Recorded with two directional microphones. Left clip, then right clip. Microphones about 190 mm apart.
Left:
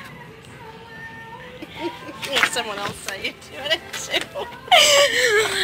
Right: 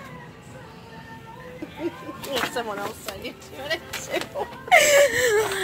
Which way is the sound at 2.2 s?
20° right (ahead or behind).